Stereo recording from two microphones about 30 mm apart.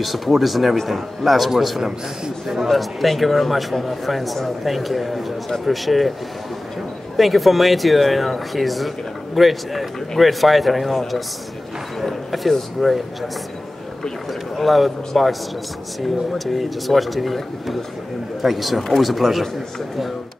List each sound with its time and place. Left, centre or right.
0.0 s speech: centre
1.8 s a man's voice: centre
2.7 s speech: centre
7.2 s speech: centre
12.3 s speech: centre
14.6 s speech: centre